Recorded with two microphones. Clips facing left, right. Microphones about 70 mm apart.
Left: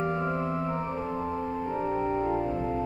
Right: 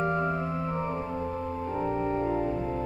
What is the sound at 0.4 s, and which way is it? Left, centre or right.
Organ, left.